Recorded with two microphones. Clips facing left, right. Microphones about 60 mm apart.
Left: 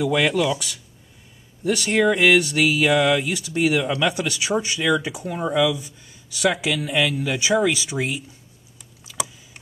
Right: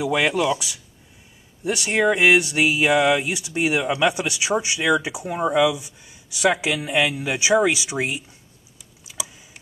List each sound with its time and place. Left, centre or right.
0.0 s speech: centre